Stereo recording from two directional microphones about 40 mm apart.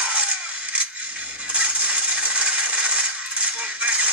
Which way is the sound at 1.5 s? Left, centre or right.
Right.